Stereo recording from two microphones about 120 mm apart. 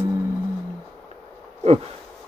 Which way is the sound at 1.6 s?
70° right (ahead or behind).